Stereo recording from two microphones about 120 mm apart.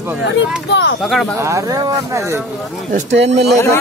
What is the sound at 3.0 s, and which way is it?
Speech, 70° right (ahead or behind).